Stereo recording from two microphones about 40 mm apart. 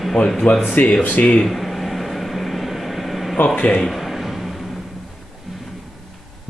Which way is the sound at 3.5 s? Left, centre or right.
Left.